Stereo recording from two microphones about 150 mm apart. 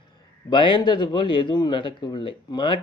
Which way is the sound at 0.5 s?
30° left (ahead or behind).